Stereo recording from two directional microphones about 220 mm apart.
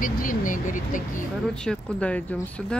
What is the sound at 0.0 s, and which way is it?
Speech, 40° left (ahead or behind).